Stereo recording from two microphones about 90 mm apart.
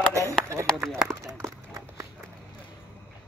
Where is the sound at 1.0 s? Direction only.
40° right (ahead or behind).